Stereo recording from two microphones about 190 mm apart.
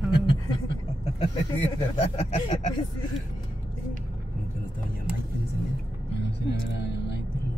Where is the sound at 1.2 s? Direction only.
30° left (ahead or behind).